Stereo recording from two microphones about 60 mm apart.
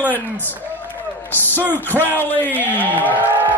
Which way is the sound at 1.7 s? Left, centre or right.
Left.